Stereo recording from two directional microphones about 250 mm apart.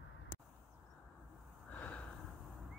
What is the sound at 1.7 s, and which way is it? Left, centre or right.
Snort, centre.